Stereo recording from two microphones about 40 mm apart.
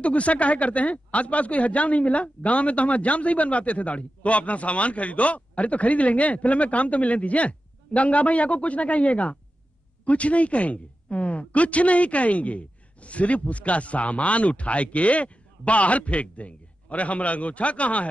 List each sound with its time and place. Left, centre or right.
0.0 s speech: left